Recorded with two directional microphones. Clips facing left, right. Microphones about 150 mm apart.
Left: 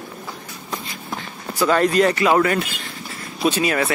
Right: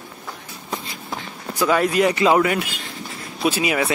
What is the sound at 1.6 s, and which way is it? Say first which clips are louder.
Speech: left 1 dB; 10° right (ahead or behind).